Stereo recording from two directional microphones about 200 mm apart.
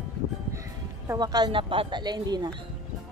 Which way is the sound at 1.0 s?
20° right (ahead or behind).